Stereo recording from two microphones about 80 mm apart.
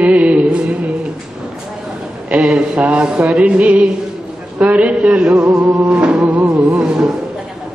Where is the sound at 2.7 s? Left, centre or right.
Centre.